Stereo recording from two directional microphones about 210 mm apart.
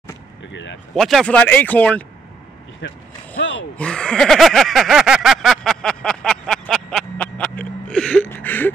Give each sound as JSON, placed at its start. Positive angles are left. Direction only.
{"t": 0.5, "sound": "speech", "side_deg": 60}
{"t": 0.9, "sound": "speech", "side_deg": 0}
{"t": 2.8, "sound": "speech", "side_deg": 55}
{"t": 3.7, "sound": "a sound", "side_deg": 5}